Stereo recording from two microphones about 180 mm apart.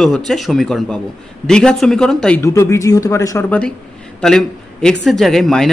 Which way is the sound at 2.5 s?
15° left (ahead or behind).